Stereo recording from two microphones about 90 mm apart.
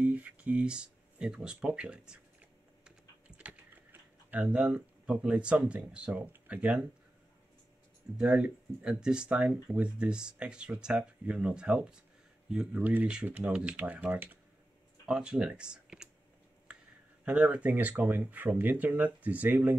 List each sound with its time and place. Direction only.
0.0 s speech: 15° right (ahead or behind)
2.8 s typing: 15° right (ahead or behind)
4.3 s speech: 10° right (ahead or behind)
8.2 s speech: 10° right (ahead or behind)
17.2 s speech: 15° right (ahead or behind)